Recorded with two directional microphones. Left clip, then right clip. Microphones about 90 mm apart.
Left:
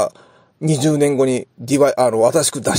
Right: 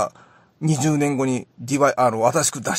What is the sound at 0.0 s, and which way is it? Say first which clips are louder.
A man's voice: left 5 dB; 30° left (ahead or behind).